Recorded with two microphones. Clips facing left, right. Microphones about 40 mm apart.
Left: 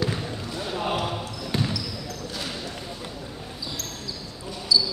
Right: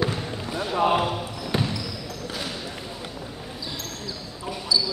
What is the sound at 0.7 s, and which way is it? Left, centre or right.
Speech, centre.